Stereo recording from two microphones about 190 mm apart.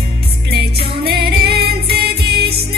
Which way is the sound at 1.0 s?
60° right (ahead or behind).